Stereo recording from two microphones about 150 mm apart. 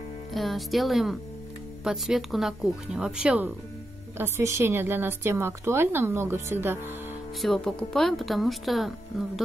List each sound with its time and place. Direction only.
0.3 s a woman's voice: centre (ahead or behind); by 6.8 s 15° right (ahead or behind)
7.4 s speech: centre (ahead or behind)